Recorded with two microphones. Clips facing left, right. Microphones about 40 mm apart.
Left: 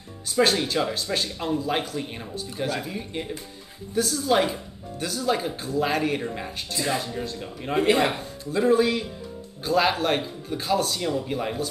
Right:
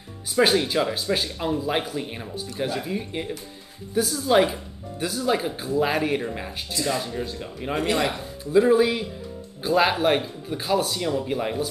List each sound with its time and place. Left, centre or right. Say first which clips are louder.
0.3 s speech: right 2 dB; centre
7.7 s speech: left 3 dB; left
8.2 s speech: right 5 dB; centre